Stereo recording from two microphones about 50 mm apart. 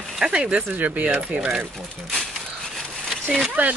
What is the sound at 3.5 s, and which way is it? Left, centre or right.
Speech, right.